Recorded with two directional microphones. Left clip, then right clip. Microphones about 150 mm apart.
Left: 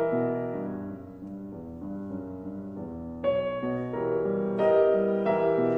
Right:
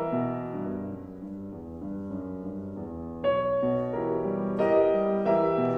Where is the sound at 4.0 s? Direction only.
Centre (ahead or behind).